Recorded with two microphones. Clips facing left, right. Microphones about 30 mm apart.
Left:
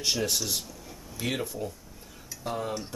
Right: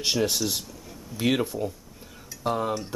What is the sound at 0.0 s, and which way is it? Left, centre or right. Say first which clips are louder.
Speech: right 4 dB; centre.